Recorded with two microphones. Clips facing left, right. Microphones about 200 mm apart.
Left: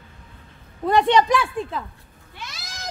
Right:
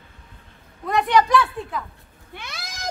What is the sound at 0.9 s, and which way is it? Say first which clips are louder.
Speech: left 1 dB; 25° left (ahead or behind).